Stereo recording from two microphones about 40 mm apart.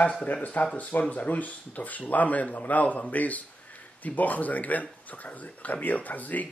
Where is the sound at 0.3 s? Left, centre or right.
Left.